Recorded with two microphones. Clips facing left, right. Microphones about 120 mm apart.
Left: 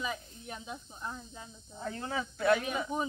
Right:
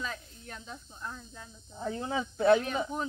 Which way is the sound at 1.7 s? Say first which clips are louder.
Right 3 dB; 15° right (ahead or behind).